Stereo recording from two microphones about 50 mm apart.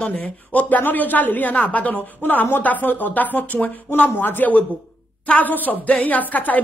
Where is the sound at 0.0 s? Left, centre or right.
Left.